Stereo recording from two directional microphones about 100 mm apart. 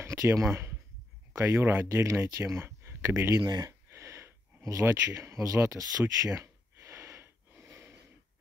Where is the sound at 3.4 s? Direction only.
40° right (ahead or behind).